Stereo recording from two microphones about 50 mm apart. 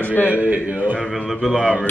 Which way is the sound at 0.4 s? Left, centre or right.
Right.